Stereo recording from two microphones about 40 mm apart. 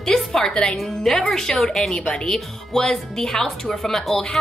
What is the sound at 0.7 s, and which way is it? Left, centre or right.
A woman's voice, centre.